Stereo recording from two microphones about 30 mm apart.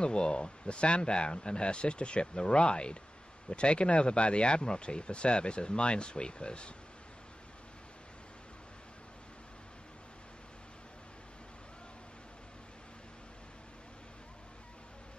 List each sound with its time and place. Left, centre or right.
0.0 s speech: left